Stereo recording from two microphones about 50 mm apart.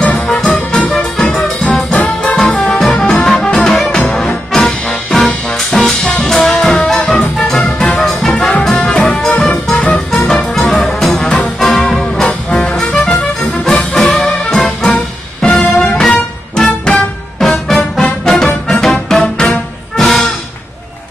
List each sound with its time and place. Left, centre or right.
0.0 s music: centre
1.3 s music: centre
2.0 s music: left
2.7 s music: centre
8.9 s music: left
9.4 s music: centre
16.6 s music: left
17.4 s music: centre
19.2 s music: left
20.0 s music: centre